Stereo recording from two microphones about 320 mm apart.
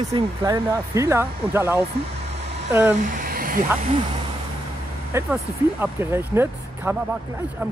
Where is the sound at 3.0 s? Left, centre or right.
Right.